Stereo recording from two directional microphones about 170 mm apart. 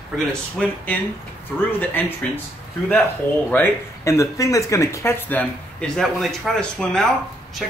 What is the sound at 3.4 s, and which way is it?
Speech, 10° left (ahead or behind).